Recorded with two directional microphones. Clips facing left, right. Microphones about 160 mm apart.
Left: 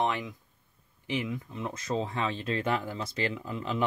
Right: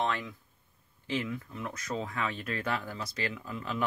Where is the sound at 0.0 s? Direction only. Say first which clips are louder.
Left 2 dB; 15° left (ahead or behind).